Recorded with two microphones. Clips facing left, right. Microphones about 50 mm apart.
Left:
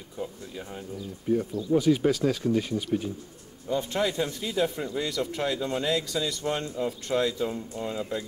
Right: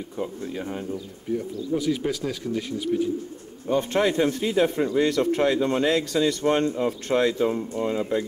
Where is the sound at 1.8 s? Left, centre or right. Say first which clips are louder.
Left 4 dB; left.